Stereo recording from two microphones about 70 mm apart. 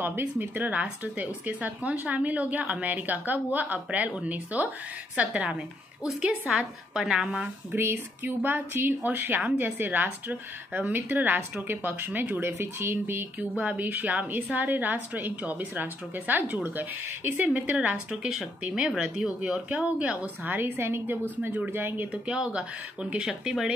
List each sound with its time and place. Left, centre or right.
0.0 s speech: right; by 5.6 s centre
6.9 s speech: centre
7.7 s speech: right
17.5 s speech: centre
20.5 s speech: right
22.1 s speech: centre